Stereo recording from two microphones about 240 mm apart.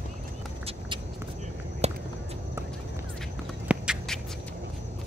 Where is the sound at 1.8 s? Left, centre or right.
Right.